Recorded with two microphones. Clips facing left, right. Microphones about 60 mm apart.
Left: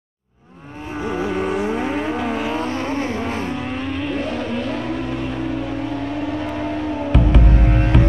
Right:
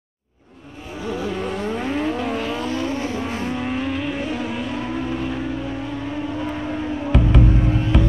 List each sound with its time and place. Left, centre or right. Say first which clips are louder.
1.0 s vehicle: left 3 dB; left
1.5 s vehicle: left 3 dB; centre
2.5 s vehicle: left 2 dB; left
3.5 s vehicle: right 1 dB; centre
7.1 s music: left 1 dB; centre
7.6 s music: left 2 dB; left